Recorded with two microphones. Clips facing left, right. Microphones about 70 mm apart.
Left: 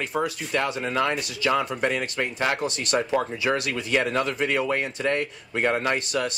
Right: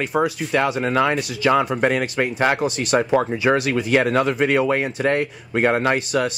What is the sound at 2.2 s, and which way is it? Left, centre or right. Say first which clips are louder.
Speech: right 6 dB; right.